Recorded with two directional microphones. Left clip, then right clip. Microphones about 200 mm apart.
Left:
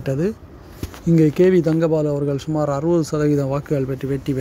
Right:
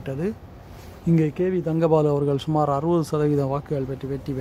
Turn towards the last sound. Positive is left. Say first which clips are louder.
# left 6 dB
turn(degrees=10)  # may be behind; listen again after turning